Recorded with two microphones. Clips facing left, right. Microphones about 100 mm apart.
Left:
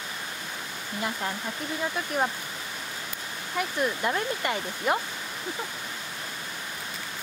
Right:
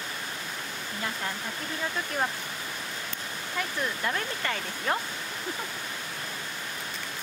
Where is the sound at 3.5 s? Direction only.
20° left (ahead or behind).